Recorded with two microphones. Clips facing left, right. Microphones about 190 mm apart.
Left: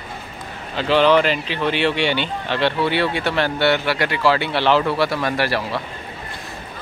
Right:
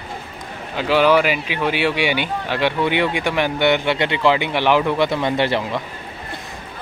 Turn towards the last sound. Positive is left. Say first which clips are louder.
# right 2 dB
turn(degrees=-20)  # may be behind; listen again after turning